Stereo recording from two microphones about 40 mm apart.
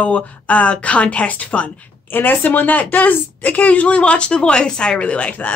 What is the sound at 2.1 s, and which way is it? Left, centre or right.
A woman's voice, left.